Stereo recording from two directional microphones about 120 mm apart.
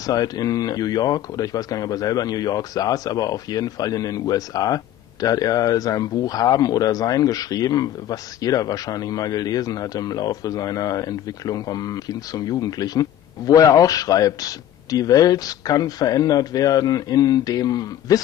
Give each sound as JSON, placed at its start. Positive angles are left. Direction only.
{"t": 0.0, "sound": "speech", "side_deg": 30}